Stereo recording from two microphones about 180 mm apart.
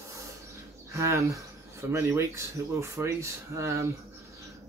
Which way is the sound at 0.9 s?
15° right (ahead or behind).